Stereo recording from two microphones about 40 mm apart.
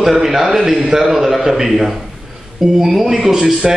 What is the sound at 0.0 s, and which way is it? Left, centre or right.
A man's voice, centre.